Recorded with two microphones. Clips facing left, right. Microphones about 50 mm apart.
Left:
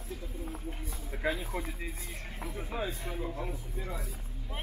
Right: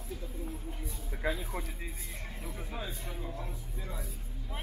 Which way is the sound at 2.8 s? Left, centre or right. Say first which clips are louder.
Left 4 dB; left.